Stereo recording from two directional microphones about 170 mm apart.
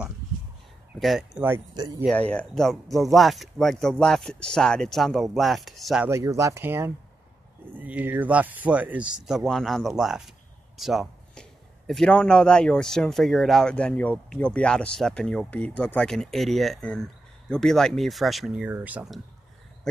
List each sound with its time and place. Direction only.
0.9 s speech: centre (ahead or behind)
1.7 s speech: 25° right (ahead or behind)
2.0 s speech: 5° left (ahead or behind)
6.0 s speech: 15° right (ahead or behind); by 10.3 s centre (ahead or behind)
10.8 s a sound: centre (ahead or behind)
11.9 s speech: 5° left (ahead or behind)